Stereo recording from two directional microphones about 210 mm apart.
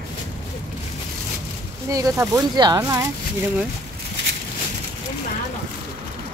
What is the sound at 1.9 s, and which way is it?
Speech, 15° right (ahead or behind).